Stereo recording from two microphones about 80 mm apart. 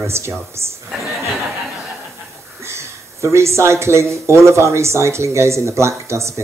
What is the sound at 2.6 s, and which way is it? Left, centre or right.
Speech, right.